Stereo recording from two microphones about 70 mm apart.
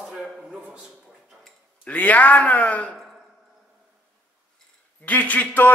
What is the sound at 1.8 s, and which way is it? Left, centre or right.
A man's voice, left.